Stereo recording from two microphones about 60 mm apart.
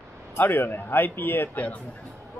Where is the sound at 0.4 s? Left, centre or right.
Left.